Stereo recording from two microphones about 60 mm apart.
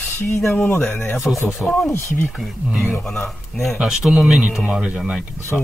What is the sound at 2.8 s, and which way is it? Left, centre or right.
Speech, centre.